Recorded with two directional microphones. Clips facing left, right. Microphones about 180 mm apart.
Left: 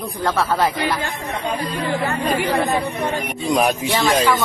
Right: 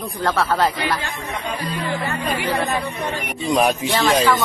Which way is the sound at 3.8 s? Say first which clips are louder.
Even; 15° left (ahead or behind).